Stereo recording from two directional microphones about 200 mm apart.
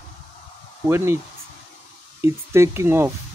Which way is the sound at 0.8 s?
10° right (ahead or behind).